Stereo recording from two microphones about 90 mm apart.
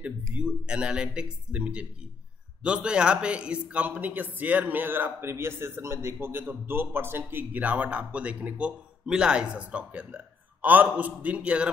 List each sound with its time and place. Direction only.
0.0 s a man's voice: 15° right (ahead or behind)